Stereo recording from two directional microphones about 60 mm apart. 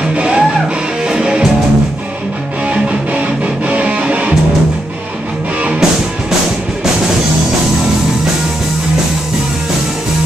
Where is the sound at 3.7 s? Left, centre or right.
Right.